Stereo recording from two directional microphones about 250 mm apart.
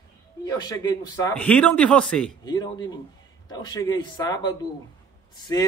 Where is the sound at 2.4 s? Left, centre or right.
Centre.